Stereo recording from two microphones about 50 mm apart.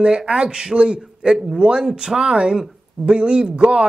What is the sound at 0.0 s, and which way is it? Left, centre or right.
Speech, centre.